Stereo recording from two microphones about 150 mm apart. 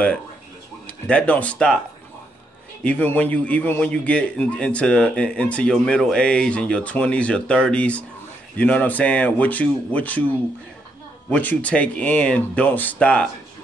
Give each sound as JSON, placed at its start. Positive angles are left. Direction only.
{"t": 0.8, "sound": "speech", "side_deg": 10}
{"t": 2.8, "sound": "a man's voice", "side_deg": 10}